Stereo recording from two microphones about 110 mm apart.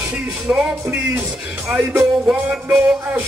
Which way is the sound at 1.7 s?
15° right (ahead or behind).